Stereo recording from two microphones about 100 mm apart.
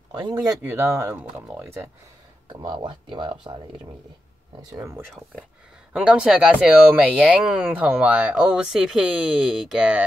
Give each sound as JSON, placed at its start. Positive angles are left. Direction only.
{"t": 0.1, "sound": "speech", "side_deg": -45}
{"t": 0.6, "sound": "speech", "side_deg": -25}
{"t": 2.5, "sound": "speech", "side_deg": -50}
{"t": 4.6, "sound": "speech", "side_deg": -40}
{"t": 5.9, "sound": "speech", "side_deg": -10}